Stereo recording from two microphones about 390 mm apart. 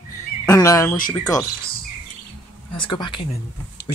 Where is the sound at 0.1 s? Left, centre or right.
Centre.